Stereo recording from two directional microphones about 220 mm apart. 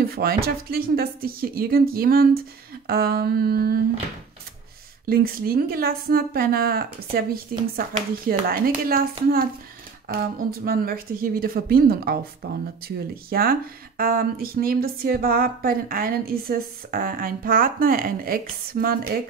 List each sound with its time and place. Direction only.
0.0 s a woman's voice: 45° right (ahead or behind)
5.0 s a woman's voice: 40° right (ahead or behind)